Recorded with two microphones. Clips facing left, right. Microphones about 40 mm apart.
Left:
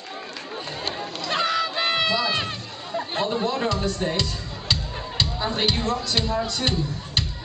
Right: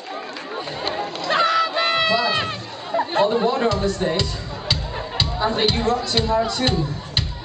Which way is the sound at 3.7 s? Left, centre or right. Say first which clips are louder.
Right 4 dB; centre.